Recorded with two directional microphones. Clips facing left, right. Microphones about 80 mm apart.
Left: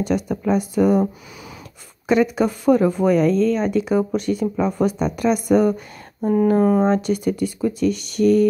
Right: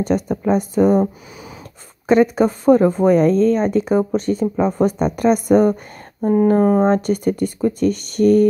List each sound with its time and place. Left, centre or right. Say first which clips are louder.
0.0 s speech: right 2 dB; right
2.0 s speech: right 4 dB; right